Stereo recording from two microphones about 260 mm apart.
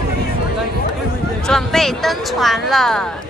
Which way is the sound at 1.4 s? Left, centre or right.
Centre.